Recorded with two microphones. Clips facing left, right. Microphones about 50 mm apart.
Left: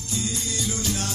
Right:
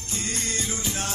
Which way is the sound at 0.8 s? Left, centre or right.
Right.